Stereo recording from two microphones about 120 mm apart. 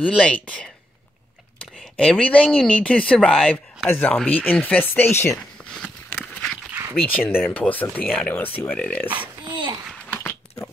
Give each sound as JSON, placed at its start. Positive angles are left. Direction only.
{"t": 0.2, "sound": "speech", "side_deg": 10}
{"t": 1.8, "sound": "speech", "side_deg": 5}
{"t": 3.9, "sound": "speech", "side_deg": 15}
{"t": 6.1, "sound": "a sound", "side_deg": 0}
{"t": 7.1, "sound": "speech", "side_deg": 15}
{"t": 9.4, "sound": "a sound", "side_deg": -40}
{"t": 10.0, "sound": "biting", "side_deg": 15}